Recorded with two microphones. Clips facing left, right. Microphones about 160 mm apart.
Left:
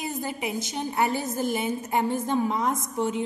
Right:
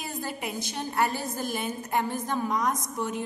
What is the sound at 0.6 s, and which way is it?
A woman's voice, 20° left (ahead or behind).